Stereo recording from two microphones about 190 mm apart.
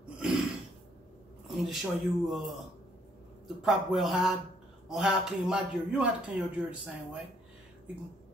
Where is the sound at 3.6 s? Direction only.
Centre (ahead or behind).